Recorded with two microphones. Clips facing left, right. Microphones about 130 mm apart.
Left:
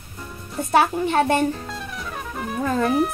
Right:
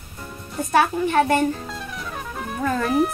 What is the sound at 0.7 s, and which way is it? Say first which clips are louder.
Speech: left 1 dB; 25° left (ahead or behind).